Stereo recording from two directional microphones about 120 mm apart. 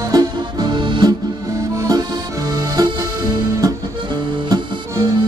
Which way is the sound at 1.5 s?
25° right (ahead or behind).